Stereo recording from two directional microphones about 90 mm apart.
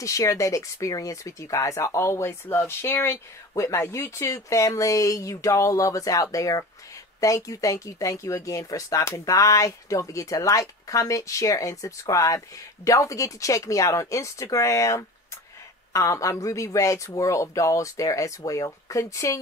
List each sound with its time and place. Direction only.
0.0 s speech: 35° left (ahead or behind)